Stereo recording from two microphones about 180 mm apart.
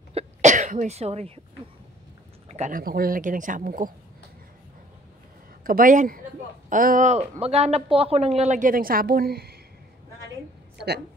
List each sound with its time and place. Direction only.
0.1 s sneeze: 40° right (ahead or behind)
2.4 s a sound: 40° right (ahead or behind)
2.8 s speech: 55° right (ahead or behind)
5.6 s speech: 50° right (ahead or behind)